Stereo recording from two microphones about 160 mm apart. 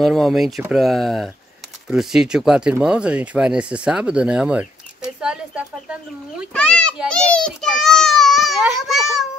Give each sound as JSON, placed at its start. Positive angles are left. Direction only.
{"t": 0.0, "sound": "a child's voice", "side_deg": 0}
{"t": 6.5, "sound": "a child's voice", "side_deg": 5}